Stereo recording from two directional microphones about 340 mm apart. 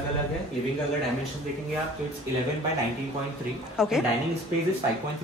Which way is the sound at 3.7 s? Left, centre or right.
Centre.